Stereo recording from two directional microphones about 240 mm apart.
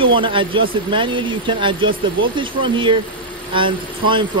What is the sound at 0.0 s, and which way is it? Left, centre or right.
Speech, right.